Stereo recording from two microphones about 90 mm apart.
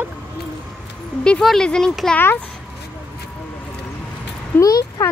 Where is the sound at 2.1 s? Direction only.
25° left (ahead or behind).